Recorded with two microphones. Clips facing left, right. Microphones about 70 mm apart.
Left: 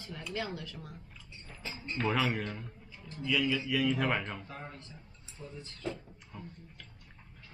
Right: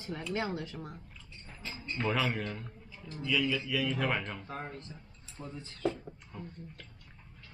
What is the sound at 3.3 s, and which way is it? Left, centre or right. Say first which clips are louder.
Speech: left 1 dB; centre.